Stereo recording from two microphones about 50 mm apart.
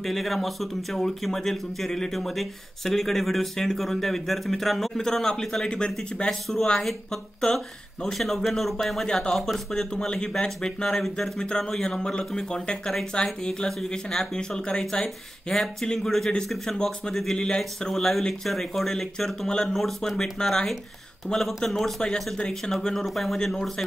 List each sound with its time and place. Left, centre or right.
0.0 s speech: centre
6.8 s speech: centre
22.0 s speech: centre